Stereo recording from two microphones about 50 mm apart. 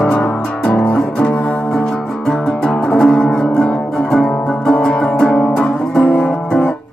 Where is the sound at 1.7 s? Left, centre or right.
Centre.